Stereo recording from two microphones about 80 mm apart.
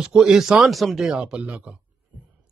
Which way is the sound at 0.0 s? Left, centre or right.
Centre.